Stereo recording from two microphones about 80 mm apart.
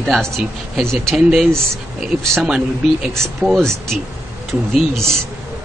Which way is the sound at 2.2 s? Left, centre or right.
Centre.